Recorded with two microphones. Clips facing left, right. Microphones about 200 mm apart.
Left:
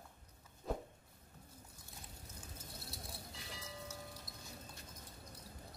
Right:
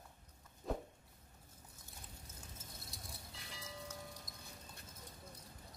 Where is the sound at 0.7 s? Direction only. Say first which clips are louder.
Even; centre (ahead or behind).